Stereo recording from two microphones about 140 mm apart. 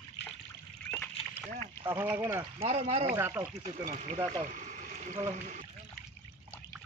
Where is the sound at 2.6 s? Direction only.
50° right (ahead or behind).